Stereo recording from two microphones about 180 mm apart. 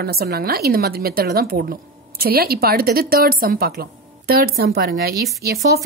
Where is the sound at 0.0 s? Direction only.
60° right (ahead or behind).